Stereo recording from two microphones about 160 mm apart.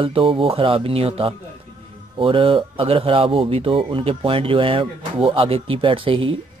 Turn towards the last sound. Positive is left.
turn(degrees=-35)  # may be behind; listen again after turning